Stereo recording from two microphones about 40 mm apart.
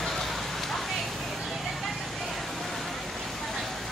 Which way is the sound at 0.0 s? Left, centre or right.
Centre.